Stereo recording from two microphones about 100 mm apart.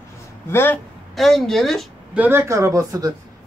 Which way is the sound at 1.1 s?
Centre (ahead or behind).